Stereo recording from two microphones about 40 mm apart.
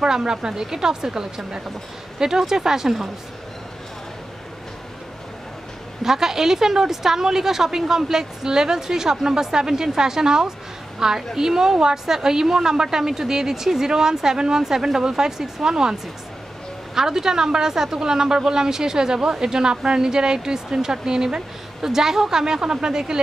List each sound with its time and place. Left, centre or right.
0.0 s a woman's voice: centre
6.0 s a woman's voice: centre